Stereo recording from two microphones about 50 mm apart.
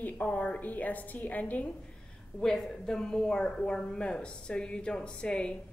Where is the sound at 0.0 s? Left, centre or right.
Left.